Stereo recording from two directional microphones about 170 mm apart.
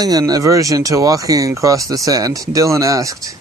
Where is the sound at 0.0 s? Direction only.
20° right (ahead or behind).